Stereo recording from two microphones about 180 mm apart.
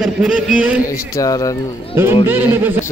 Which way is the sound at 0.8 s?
20° left (ahead or behind).